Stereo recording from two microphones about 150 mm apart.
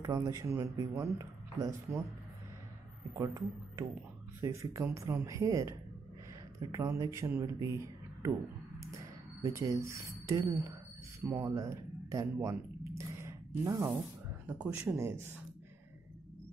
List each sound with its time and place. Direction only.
0.0 s speech: 25° right (ahead or behind)
3.2 s speech: 20° right (ahead or behind)
9.4 s speech: 20° right (ahead or behind)